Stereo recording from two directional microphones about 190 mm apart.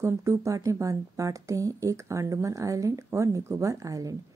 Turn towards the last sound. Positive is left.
turn(degrees=-15)  # may be behind; listen again after turning